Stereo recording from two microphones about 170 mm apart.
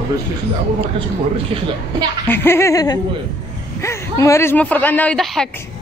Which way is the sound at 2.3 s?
15° left (ahead or behind).